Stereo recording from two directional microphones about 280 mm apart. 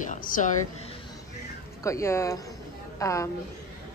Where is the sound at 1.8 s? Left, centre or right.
Centre.